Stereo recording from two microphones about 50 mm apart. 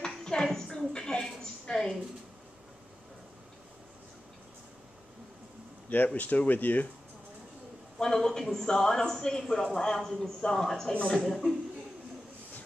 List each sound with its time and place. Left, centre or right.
0.0 s a sound: centre
5.9 s speech: left
8.0 s a man's voice: centre